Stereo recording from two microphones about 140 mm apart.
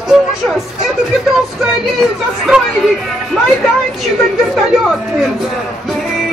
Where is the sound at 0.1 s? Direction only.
Centre (ahead or behind).